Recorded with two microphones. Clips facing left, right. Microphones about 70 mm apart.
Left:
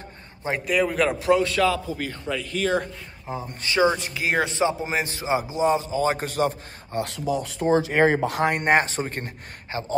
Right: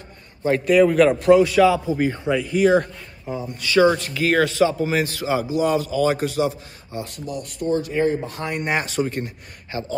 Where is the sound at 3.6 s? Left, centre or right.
Left.